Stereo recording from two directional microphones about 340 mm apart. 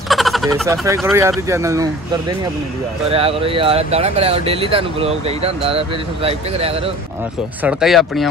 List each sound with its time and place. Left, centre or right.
0.1 s speech: centre
3.1 s speech: centre
7.6 s speech: centre